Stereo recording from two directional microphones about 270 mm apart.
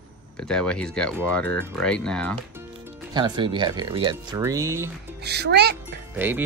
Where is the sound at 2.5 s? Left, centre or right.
Centre.